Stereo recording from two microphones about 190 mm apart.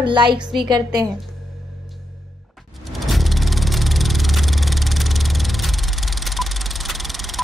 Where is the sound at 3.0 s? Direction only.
Centre (ahead or behind).